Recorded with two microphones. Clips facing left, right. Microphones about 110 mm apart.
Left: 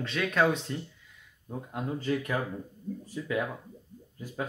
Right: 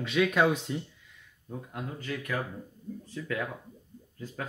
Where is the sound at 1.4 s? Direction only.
25° left (ahead or behind).